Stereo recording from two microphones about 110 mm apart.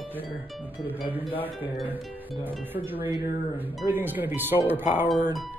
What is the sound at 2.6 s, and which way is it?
Speech, 20° right (ahead or behind).